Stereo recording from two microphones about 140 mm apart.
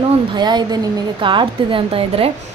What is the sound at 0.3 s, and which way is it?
A woman's voice, 30° right (ahead or behind).